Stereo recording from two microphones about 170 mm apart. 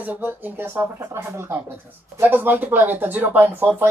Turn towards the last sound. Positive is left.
turn(degrees=-10)  # may be behind; listen again after turning